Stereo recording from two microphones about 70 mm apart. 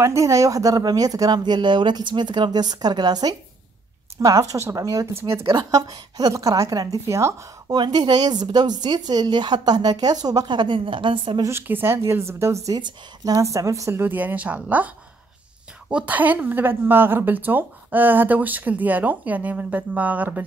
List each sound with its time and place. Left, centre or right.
0.0 s speech: right
4.2 s speech: right
6.3 s a woman's voice: right
7.6 s speech: right
11.6 s a woman's voice: right
12.7 s speech: right
13.4 s a woman's voice: right
14.0 s a woman's voice: right
16.1 s a woman's voice: right